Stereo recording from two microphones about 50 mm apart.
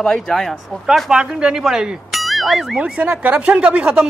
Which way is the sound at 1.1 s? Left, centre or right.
Centre.